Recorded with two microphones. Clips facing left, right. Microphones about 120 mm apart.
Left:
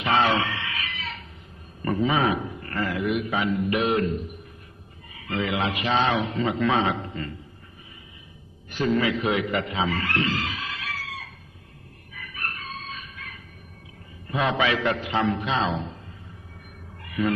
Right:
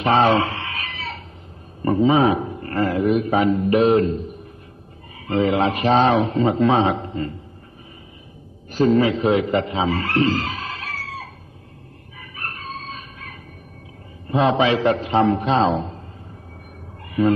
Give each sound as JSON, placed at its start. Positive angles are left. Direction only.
{"t": 0.0, "sound": "a sound", "side_deg": -40}
{"t": 1.8, "sound": "a man's voice", "side_deg": -25}
{"t": 5.2, "sound": "a man's voice", "side_deg": -35}
{"t": 8.7, "sound": "speech", "side_deg": -35}
{"t": 12.2, "sound": "chicken", "side_deg": -30}
{"t": 14.3, "sound": "a man's voice", "side_deg": -30}
{"t": 17.2, "sound": "a man's voice", "side_deg": -30}